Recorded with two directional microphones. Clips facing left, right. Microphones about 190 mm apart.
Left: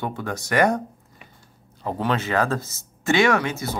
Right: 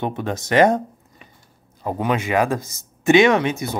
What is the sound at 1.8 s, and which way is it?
Speech, 10° right (ahead or behind).